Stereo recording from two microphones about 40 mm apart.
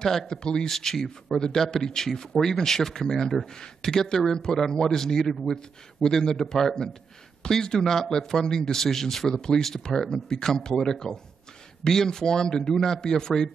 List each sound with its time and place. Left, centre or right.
0.0 s speech: centre
0.3 s speech: centre
0.7 s speech: centre